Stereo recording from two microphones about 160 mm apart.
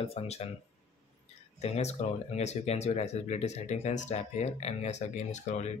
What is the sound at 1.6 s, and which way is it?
Speech, 40° left (ahead or behind).